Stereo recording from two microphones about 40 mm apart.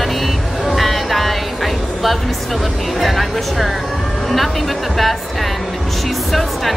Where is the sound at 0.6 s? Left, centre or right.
Centre.